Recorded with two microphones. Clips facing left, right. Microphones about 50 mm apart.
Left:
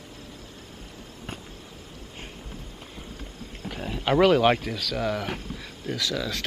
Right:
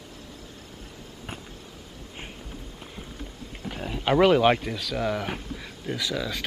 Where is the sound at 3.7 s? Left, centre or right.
Centre.